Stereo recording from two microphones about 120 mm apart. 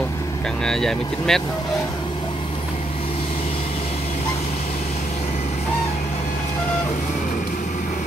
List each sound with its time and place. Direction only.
0.7 s speech: 5° left (ahead or behind)